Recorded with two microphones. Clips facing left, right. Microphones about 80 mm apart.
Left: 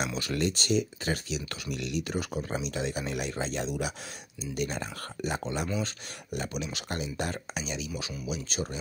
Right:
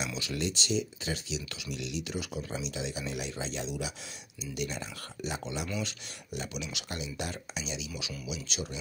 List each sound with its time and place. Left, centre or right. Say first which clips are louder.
0.0 s speech: left 4 dB; left